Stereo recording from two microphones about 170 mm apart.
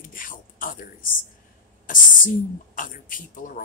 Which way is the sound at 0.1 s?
55° left (ahead or behind).